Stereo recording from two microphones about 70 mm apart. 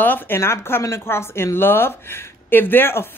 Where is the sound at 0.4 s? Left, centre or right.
Left.